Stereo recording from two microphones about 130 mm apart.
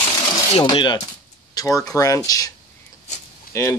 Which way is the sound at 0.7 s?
35° left (ahead or behind).